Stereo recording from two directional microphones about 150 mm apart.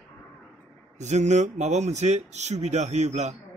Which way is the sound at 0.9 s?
50° right (ahead or behind).